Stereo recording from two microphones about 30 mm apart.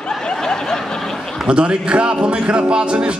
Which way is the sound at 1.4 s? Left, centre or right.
Right.